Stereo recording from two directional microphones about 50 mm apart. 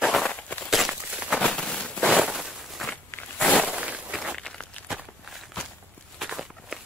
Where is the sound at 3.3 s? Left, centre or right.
Left.